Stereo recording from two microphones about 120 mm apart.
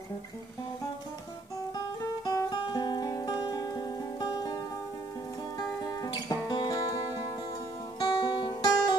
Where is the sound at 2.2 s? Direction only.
30° left (ahead or behind).